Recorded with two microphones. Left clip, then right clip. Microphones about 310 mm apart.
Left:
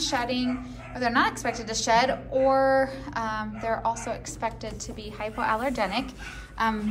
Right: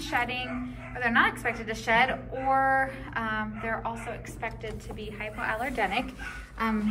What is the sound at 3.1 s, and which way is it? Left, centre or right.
A woman's voice, centre.